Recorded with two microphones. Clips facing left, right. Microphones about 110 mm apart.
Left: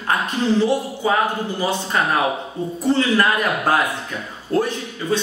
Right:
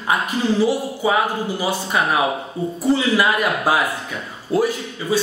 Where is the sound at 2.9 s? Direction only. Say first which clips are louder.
Even; 10° right (ahead or behind).